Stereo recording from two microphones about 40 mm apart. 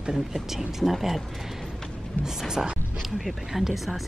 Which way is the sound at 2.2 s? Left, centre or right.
Centre.